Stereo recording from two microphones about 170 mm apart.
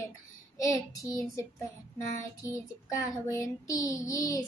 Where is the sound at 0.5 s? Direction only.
20° left (ahead or behind).